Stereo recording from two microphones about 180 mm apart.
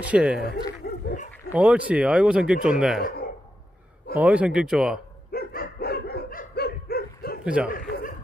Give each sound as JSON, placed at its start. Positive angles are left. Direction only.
{"t": 0.0, "sound": "speech", "side_deg": -5}
{"t": 0.4, "sound": "chuckle", "side_deg": 65}
{"t": 1.5, "sound": "speech", "side_deg": -5}
{"t": 4.1, "sound": "speech", "side_deg": -10}
{"t": 5.3, "sound": "dog", "side_deg": 55}
{"t": 7.4, "sound": "speech", "side_deg": -5}
{"t": 7.7, "sound": "chuckle", "side_deg": 50}